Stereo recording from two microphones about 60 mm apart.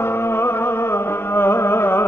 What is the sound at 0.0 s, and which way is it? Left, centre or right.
Music, left.